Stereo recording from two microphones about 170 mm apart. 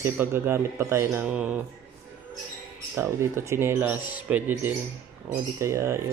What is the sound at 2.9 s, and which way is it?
A man's voice, 15° right (ahead or behind).